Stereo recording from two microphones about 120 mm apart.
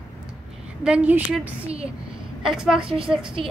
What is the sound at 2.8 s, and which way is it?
Speech, 50° right (ahead or behind).